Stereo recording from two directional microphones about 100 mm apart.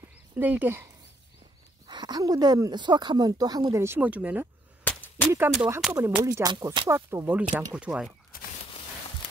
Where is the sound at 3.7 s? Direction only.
25° right (ahead or behind).